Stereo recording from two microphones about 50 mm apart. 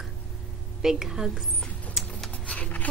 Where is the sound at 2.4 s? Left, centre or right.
Left.